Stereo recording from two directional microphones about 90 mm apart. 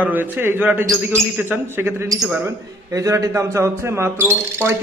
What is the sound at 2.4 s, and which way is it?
A man's voice, 35° right (ahead or behind).